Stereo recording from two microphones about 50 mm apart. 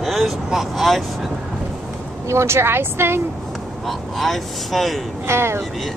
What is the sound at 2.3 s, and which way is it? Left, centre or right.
Speech, right.